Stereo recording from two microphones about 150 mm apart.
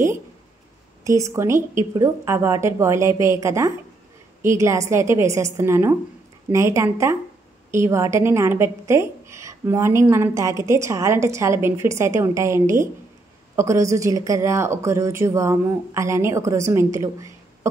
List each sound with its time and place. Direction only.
1.0 s a woman's voice: 20° right (ahead or behind)